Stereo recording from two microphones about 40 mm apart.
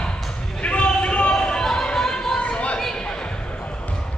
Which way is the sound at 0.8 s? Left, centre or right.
Left.